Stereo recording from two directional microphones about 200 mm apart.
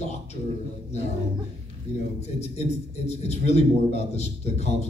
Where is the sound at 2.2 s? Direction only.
35° left (ahead or behind).